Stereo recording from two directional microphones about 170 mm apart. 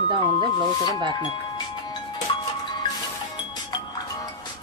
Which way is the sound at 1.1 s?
25° left (ahead or behind).